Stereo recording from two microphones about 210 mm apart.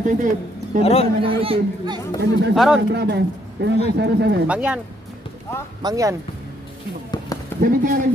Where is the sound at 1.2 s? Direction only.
25° right (ahead or behind).